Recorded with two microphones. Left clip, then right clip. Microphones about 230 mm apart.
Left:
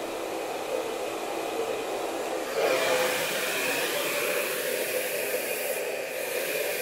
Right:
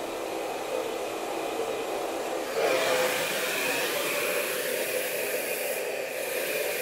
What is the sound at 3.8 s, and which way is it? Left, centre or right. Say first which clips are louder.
Hair dryer: even; centre.